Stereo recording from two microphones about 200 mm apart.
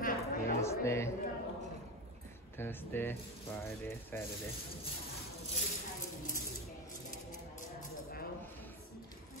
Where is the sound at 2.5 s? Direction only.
10° left (ahead or behind).